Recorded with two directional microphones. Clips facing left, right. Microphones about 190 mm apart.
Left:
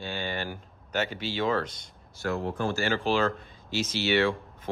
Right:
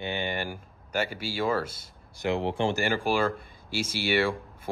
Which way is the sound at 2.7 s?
10° right (ahead or behind).